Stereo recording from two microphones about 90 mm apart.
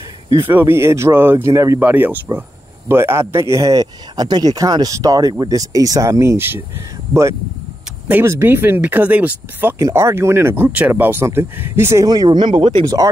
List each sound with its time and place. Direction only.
0.4 s speech: 25° right (ahead or behind)
1.8 s speech: 20° right (ahead or behind)
8.1 s speech: 30° right (ahead or behind)
9.8 s speech: 35° right (ahead or behind)
12.0 s speech: 45° right (ahead or behind); by 12.8 s 65° right (ahead or behind)
12.8 s speech: 40° right (ahead or behind)